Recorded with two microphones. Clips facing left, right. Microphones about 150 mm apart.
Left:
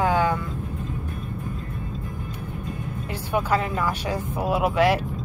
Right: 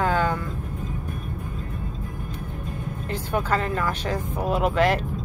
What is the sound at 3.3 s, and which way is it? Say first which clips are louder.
Speech: left 1 dB; 10° left (ahead or behind).